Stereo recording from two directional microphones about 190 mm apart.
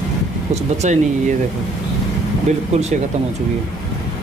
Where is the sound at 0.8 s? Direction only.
40° right (ahead or behind).